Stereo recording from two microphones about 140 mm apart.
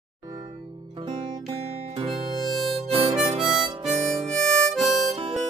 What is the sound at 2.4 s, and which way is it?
Harmonica, centre (ahead or behind).